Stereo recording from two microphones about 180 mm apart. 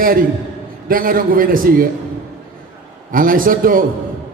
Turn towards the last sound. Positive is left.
turn(degrees=-50)  # may be behind; listen again after turning